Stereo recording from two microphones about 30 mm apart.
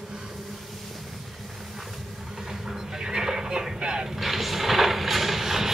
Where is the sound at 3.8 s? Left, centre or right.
Right.